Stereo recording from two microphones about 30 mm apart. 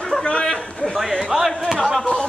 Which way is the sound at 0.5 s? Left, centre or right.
Centre.